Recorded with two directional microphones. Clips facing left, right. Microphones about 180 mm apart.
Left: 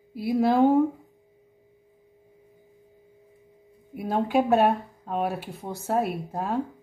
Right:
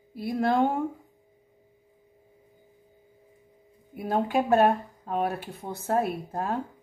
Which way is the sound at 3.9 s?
Centre (ahead or behind).